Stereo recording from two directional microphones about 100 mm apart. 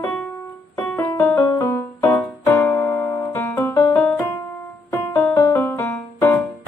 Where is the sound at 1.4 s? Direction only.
35° left (ahead or behind).